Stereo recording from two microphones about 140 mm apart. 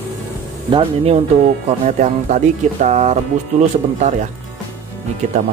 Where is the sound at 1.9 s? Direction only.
60° right (ahead or behind).